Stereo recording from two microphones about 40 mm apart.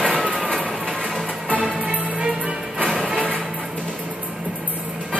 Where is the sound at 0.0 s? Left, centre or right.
Right.